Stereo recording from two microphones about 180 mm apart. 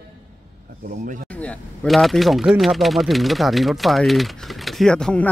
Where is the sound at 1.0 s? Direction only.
50° right (ahead or behind).